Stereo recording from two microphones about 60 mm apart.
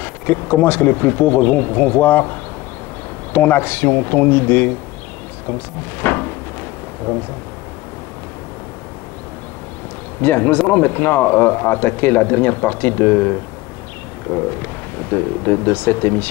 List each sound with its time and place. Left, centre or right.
0.0 s speech: left
3.3 s speech: left
10.2 s speech: left